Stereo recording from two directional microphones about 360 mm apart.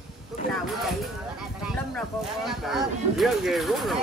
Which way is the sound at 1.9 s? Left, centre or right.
Centre.